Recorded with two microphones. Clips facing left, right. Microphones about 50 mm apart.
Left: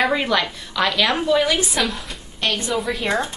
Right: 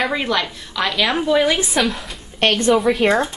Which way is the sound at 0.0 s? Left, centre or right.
Centre.